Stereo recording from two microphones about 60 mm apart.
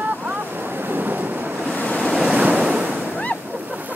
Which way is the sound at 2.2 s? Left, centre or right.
Right.